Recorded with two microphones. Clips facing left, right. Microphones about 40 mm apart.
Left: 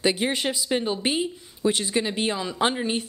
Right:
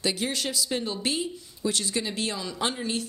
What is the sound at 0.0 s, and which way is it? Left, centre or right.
Speech, left.